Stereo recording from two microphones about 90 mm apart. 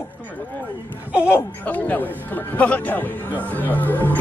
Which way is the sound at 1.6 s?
20° left (ahead or behind).